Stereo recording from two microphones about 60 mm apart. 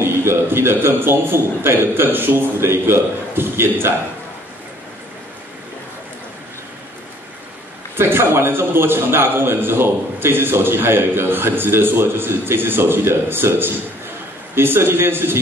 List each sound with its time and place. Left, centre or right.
0.0 s a man's voice: right
7.9 s a man's voice: right